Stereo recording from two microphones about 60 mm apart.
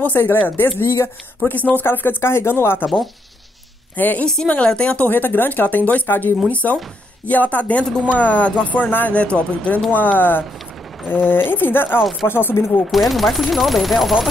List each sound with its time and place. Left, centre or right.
0.1 s speech: left
0.7 s speech: left
1.5 s speech: left
1.9 s speech: left
3.9 s a woman's voice: left
4.6 s speech: centre
5.1 s speech: left
12.0 s speech: centre
12.3 s speech: left
12.8 s speech: centre